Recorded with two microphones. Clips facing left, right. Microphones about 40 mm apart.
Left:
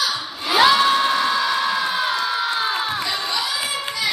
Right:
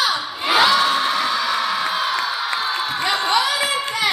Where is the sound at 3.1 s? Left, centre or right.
Right.